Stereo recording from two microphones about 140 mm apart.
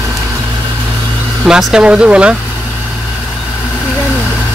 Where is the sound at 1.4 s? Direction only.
5° right (ahead or behind).